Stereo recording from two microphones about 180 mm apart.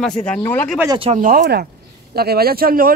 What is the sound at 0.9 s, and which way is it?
Speech, 30° right (ahead or behind).